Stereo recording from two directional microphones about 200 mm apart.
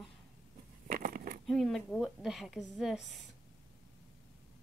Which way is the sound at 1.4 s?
Centre (ahead or behind).